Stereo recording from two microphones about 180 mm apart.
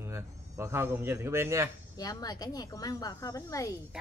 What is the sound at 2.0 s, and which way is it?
Speech, 20° left (ahead or behind).